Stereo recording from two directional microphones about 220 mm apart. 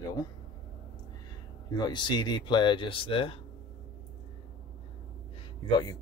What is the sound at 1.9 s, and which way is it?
Speech, 20° left (ahead or behind).